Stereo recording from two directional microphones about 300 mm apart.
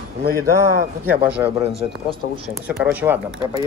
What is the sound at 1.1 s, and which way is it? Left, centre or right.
A man's voice, centre.